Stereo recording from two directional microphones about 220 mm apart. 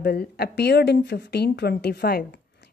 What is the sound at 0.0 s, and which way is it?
Speech, 45° left (ahead or behind).